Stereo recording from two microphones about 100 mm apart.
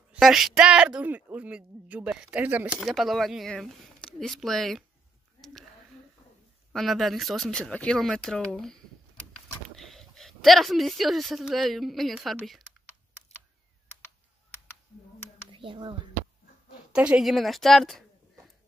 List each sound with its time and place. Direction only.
0.2 s speech: 5° right (ahead or behind)
2.8 s speech: centre (ahead or behind)
5.4 s a sound: centre (ahead or behind)
6.7 s speech: centre (ahead or behind)
15.5 s speech: 55° right (ahead or behind)
16.9 s speech: 10° right (ahead or behind)